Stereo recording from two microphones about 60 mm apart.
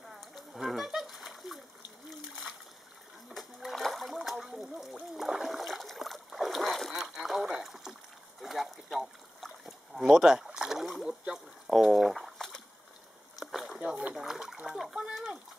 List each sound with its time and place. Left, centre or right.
0.1 s splash: centre
3.3 s splash: centre
6.9 s rowboat: centre
8.4 s a sound: centre
13.7 s a sound: centre
14.1 s splash: centre